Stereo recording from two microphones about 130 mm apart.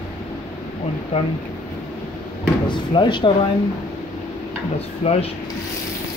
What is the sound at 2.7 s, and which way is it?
Speech, 35° left (ahead or behind).